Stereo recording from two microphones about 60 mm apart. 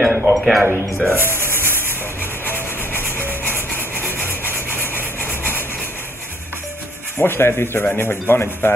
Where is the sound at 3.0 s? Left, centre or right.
Right.